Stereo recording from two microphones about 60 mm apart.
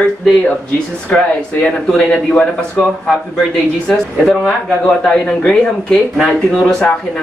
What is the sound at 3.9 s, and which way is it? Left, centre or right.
Speech, centre.